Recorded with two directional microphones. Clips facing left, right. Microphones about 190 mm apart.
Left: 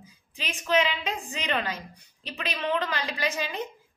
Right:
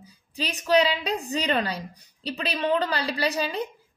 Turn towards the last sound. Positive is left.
turn(degrees=-35)  # may be behind; listen again after turning